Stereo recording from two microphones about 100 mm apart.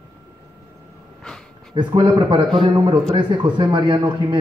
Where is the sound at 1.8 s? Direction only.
50° right (ahead or behind).